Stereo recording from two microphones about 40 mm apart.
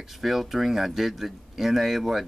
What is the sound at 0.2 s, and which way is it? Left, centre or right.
Speech, centre.